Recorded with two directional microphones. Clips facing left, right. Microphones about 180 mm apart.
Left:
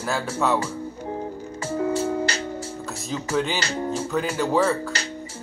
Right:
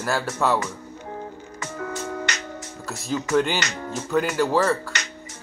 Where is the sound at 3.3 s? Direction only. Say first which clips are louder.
Right 3 dB; centre (ahead or behind).